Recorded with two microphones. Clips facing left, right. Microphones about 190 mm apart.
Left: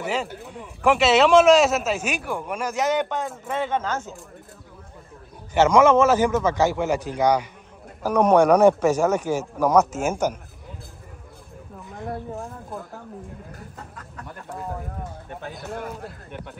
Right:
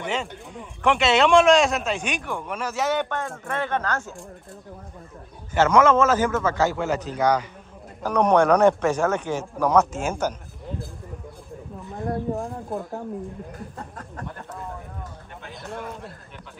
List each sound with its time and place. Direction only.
0.0 s a man's voice: 5° left (ahead or behind); by 4.1 s 20° left (ahead or behind)
5.5 s a man's voice: 10° left (ahead or behind)
15.5 s a man's voice: centre (ahead or behind)